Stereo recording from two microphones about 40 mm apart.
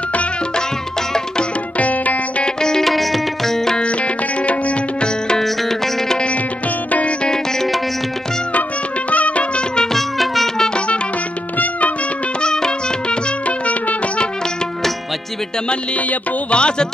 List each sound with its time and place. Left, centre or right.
1.8 s music: left
2.4 s music: centre
2.8 s music: centre
3.5 s music: centre
3.8 s music: left
5.4 s music: centre
6.9 s music: left
9.1 s music: left
9.9 s music: centre
11.5 s music: left
12.4 s music: centre
13.5 s music: left
16.4 s music: left